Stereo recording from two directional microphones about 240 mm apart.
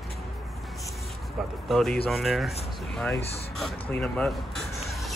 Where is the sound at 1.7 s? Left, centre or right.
Centre.